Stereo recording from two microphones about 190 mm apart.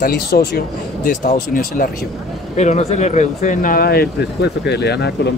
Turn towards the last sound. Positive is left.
turn(degrees=60)  # may be behind; listen again after turning